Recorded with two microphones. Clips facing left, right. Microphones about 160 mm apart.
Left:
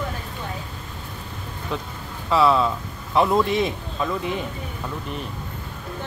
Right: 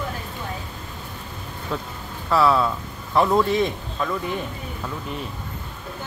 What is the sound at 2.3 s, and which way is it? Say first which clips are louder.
Speech: even; centre (ahead or behind).